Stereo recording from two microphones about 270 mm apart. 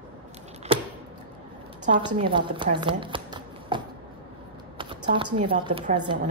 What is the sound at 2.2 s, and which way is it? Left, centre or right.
Speech, centre.